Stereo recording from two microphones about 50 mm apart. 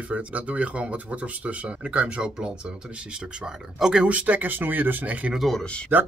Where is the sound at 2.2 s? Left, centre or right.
Centre.